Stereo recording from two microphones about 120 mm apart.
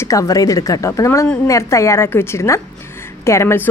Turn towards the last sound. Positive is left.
turn(degrees=25)  # may be behind; listen again after turning